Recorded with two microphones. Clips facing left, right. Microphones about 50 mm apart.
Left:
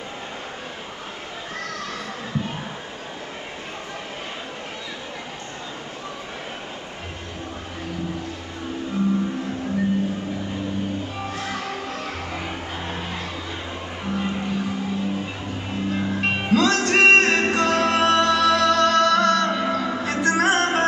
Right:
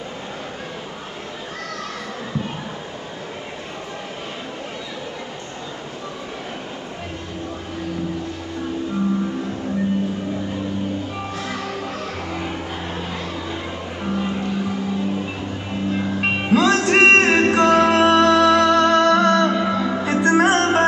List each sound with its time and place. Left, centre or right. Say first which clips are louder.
16.2 s music: right 2 dB; centre
20.4 s music: right 3 dB; centre